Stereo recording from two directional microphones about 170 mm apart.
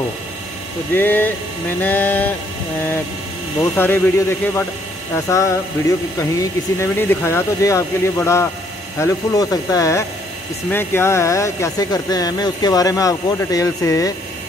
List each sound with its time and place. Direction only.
0.9 s speech: 10° left (ahead or behind)
3.7 s speech: 10° left (ahead or behind)